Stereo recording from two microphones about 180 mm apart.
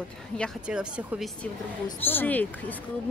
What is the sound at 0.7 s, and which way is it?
Speech, 5° right (ahead or behind).